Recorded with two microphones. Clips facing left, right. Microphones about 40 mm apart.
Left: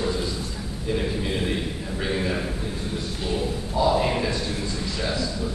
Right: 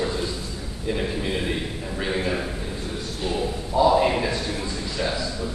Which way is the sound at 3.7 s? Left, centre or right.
Centre.